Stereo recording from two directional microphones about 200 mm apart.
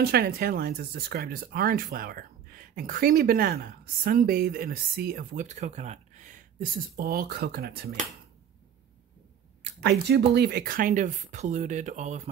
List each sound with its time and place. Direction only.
0.0 s speech: 50° right (ahead or behind)
9.6 s a sound: 60° right (ahead or behind)
10.3 s speech: 55° right (ahead or behind); by 12.2 s 35° right (ahead or behind)